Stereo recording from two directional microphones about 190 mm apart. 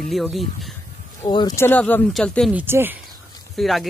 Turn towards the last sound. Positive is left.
turn(degrees=0)  # may be behind; listen again after turning